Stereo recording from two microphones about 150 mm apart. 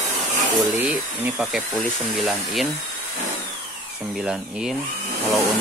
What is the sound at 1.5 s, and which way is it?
Speech, centre (ahead or behind).